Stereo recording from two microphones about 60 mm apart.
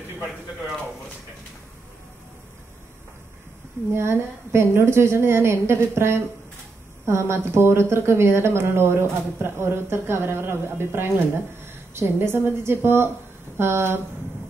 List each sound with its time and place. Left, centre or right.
3.9 s speech: right